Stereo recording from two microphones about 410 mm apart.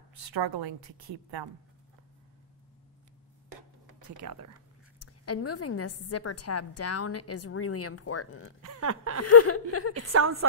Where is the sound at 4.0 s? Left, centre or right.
Right.